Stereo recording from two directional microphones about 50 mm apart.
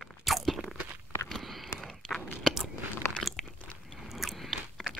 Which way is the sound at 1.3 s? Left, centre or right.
Centre.